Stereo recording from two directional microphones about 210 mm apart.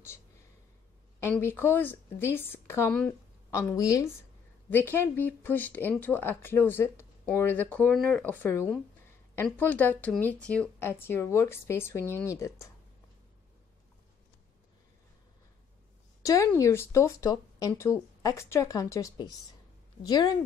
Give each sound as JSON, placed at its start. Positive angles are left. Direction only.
{"t": 1.2, "sound": "speech", "side_deg": 10}
{"t": 16.3, "sound": "speech", "side_deg": 15}